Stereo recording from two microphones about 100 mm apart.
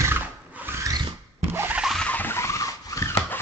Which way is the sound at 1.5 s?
20° right (ahead or behind).